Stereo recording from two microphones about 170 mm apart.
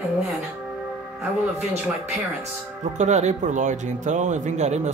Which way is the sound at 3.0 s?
45° right (ahead or behind).